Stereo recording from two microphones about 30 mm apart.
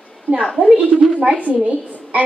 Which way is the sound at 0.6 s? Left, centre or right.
Right.